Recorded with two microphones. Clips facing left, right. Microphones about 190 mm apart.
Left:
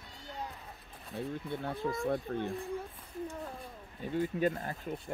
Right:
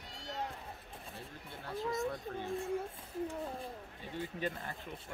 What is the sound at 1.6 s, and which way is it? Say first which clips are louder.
Speech: right 1 dB; 55° left (ahead or behind).